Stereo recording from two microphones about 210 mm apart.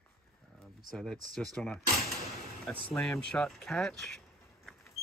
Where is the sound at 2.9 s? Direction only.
10° left (ahead or behind).